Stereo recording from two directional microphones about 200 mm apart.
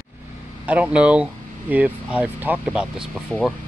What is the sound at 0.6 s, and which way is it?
Speech, 5° right (ahead or behind).